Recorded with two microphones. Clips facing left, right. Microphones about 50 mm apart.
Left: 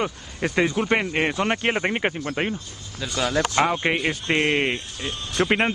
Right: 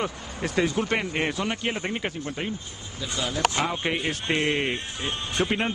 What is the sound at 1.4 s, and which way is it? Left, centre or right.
Speech, left.